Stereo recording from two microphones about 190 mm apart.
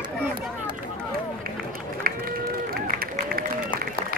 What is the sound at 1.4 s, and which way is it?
Run, 50° right (ahead or behind).